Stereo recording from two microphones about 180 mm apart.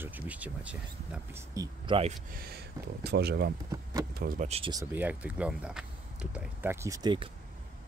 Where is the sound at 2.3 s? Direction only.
60° right (ahead or behind).